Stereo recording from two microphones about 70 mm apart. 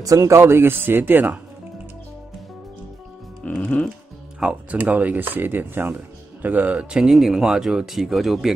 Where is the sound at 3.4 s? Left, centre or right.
Centre.